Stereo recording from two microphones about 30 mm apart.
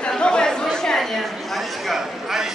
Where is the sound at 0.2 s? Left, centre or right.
Left.